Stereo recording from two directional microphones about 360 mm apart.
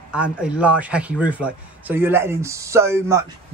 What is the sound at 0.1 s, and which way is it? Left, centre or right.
A man's voice, centre.